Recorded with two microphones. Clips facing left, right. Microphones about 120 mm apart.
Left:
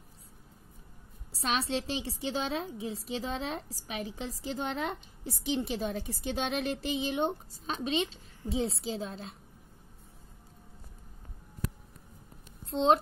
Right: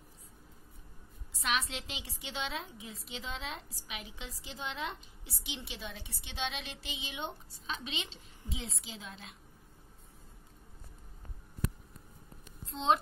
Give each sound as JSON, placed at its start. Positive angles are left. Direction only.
{"t": 1.3, "sound": "a woman's voice", "side_deg": 35}
{"t": 12.6, "sound": "speech", "side_deg": 35}